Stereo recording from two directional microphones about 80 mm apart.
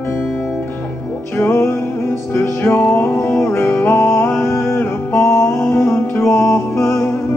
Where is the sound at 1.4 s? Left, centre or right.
Left.